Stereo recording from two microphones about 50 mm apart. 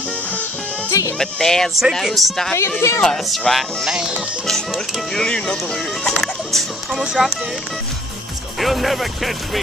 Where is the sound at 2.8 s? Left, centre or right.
Left.